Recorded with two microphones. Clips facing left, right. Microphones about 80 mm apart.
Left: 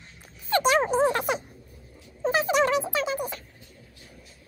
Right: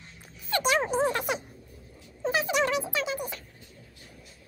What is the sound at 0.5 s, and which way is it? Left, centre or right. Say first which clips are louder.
Music: left 4 dB; left.